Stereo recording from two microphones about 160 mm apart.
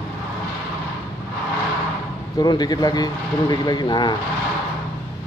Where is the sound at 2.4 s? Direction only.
25° left (ahead or behind).